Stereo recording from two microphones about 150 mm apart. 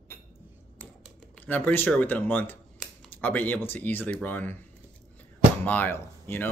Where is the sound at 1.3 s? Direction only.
10° left (ahead or behind).